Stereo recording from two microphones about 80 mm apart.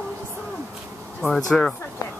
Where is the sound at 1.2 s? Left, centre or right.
Centre.